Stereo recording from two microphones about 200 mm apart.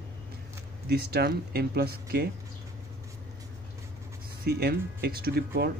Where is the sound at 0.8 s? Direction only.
55° right (ahead or behind).